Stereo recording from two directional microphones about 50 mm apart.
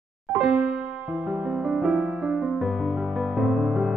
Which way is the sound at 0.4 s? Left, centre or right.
Centre.